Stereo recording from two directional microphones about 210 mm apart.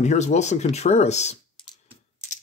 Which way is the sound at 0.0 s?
35° left (ahead or behind).